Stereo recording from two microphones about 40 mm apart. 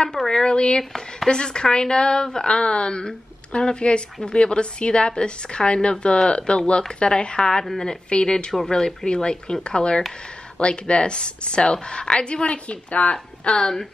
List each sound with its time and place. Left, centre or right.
0.2 s speech: centre
0.6 s speech: left
7.6 s a woman's voice: centre
8.1 s speech: left
13.6 s a woman's voice: centre